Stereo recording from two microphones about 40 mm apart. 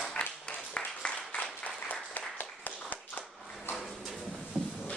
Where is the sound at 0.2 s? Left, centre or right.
Left.